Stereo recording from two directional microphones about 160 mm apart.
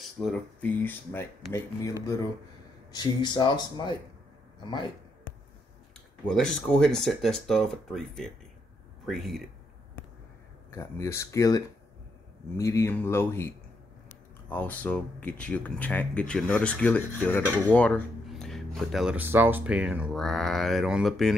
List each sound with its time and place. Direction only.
0.0 s speech: centre (ahead or behind); by 2.0 s 20° left (ahead or behind)
2.9 s speech: 30° left (ahead or behind)
6.2 s speech: 5° left (ahead or behind)
10.7 s speech: 15° left (ahead or behind)
14.5 s speech: 10° left (ahead or behind)